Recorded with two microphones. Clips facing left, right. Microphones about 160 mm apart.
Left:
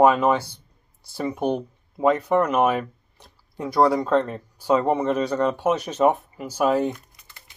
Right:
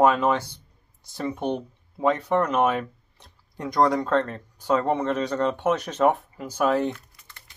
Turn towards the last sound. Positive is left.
turn(degrees=10)  # may be behind; listen again after turning